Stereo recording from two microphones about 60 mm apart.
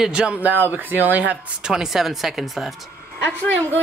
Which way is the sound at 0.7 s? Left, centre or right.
Right.